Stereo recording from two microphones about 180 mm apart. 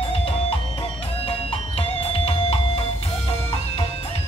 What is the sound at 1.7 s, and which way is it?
Music, 30° left (ahead or behind).